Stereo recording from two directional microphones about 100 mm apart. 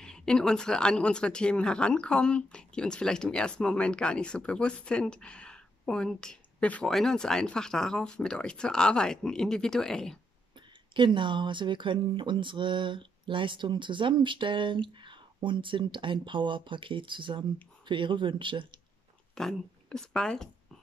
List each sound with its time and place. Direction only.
0.0 s a woman's voice: 5° left (ahead or behind)
11.0 s speech: 55° right (ahead or behind)
19.3 s a woman's voice: 5° left (ahead or behind)